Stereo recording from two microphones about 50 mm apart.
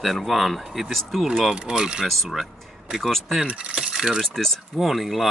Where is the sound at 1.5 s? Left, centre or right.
Centre.